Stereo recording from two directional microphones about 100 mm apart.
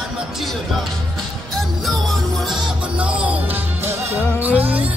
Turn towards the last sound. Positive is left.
turn(degrees=-15)  # may be behind; listen again after turning